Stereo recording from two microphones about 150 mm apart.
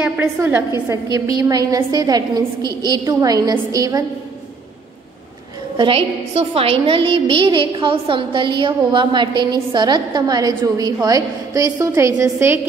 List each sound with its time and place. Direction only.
0.0 s a woman's voice: 15° right (ahead or behind)
5.8 s a woman's voice: 40° right (ahead or behind); by 12.5 s 15° right (ahead or behind)